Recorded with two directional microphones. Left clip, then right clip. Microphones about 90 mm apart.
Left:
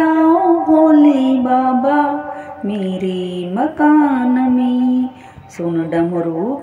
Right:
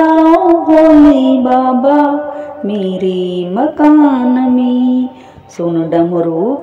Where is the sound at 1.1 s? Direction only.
35° right (ahead or behind).